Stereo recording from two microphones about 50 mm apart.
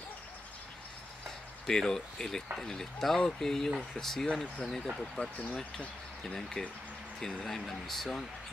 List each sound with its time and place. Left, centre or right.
1.7 s speech: centre
5.5 s speech: left
6.2 s speech: centre